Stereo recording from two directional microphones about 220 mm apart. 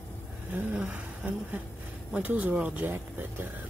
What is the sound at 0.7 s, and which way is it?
Speech, 5° right (ahead or behind).